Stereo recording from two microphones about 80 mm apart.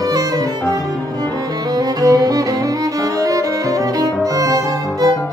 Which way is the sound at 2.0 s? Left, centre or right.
Right.